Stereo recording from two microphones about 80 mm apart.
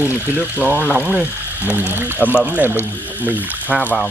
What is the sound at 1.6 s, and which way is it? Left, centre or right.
Speech, right.